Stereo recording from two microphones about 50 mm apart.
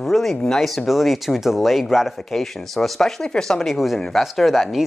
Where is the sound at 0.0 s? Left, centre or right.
Centre.